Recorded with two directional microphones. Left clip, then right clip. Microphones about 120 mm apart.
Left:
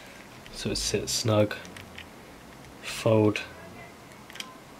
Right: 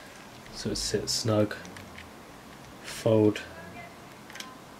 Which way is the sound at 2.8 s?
15° left (ahead or behind).